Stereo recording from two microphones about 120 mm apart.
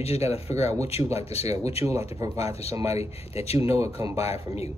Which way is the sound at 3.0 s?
60° left (ahead or behind).